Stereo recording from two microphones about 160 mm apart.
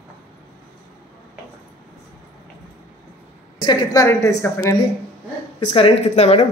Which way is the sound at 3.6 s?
25° left (ahead or behind).